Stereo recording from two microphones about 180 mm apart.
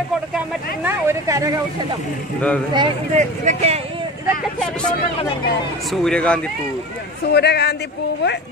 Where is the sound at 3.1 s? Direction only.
40° right (ahead or behind).